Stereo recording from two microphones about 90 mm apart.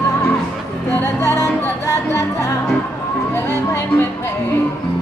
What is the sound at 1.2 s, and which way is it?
Music, 40° left (ahead or behind).